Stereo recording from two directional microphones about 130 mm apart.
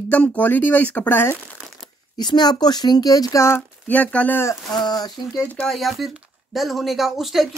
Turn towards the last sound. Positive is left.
turn(degrees=0)  # may be behind; listen again after turning